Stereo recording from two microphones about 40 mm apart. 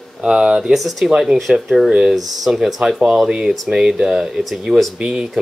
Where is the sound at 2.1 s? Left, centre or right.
Centre.